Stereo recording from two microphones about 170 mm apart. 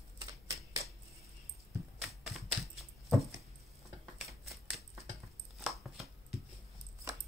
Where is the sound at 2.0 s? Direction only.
Centre (ahead or behind).